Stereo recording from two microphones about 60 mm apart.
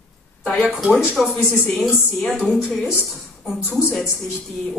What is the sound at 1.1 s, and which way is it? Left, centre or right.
Speech, centre.